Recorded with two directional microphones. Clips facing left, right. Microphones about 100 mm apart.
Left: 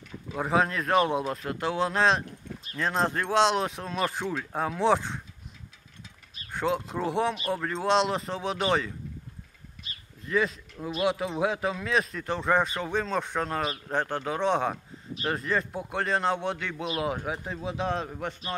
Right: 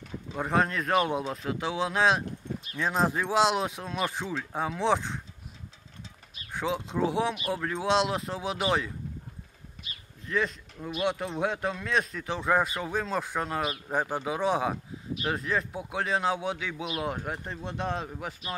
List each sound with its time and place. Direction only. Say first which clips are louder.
0.3 s a man's voice: left 1 dB; centre (ahead or behind)
6.5 s a man's voice: left 2 dB; centre (ahead or behind)
9.8 s a sound: left 1 dB; 35° left (ahead or behind)
10.2 s a man's voice: left 3 dB; centre (ahead or behind)